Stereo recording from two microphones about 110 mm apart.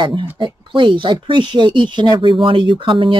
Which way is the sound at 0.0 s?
45° right (ahead or behind).